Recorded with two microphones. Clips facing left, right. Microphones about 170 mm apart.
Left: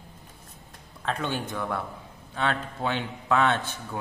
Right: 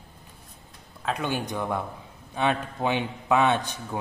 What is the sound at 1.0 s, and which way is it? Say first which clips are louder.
A man's voice: right 1 dB; 10° right (ahead or behind).